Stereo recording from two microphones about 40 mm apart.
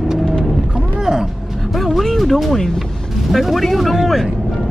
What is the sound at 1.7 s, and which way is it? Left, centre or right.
Speech, centre.